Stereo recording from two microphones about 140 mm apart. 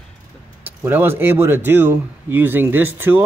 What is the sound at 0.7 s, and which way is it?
Speech, 15° right (ahead or behind).